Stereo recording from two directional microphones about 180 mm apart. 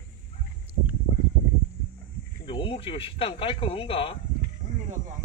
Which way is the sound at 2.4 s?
30° left (ahead or behind).